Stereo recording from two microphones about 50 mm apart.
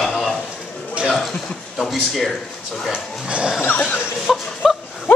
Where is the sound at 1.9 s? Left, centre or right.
Centre.